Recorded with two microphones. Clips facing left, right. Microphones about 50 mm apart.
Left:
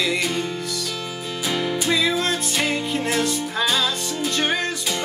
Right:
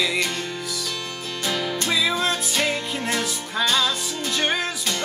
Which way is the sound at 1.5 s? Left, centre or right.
Centre.